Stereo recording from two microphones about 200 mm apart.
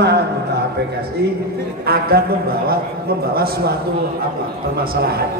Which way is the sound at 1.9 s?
50° right (ahead or behind).